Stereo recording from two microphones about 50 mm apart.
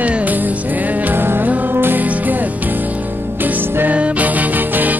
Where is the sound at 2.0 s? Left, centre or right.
Right.